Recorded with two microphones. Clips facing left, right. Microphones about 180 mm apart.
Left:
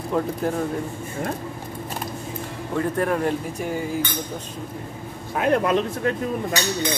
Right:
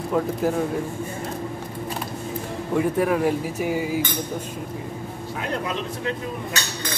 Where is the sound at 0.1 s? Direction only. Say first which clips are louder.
Right 1 dB; 5° right (ahead or behind).